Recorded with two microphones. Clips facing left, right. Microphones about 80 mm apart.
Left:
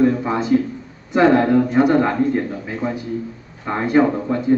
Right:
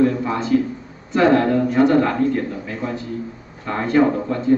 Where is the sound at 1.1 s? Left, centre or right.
Centre.